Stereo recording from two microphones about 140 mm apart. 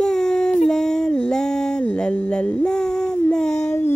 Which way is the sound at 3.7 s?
20° left (ahead or behind).